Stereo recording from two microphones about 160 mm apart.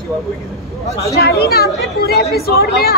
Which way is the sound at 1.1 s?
80° left.